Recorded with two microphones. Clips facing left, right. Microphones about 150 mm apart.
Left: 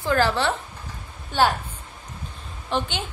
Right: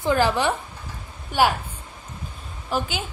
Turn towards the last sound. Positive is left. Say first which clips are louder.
# even
turn(degrees=-5)  # may be behind; listen again after turning